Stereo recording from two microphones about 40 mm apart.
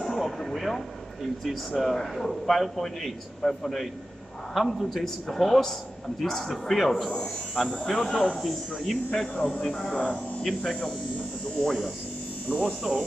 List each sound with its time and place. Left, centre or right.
0.0 s a man's voice: centre
9.8 s speech: left
10.4 s a man's voice: centre
12.9 s speech: centre